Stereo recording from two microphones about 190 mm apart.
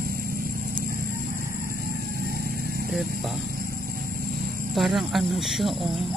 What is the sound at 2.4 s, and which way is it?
Vehicle, 50° right (ahead or behind).